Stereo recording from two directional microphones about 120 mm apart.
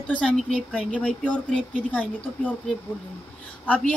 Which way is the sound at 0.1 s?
10° left (ahead or behind).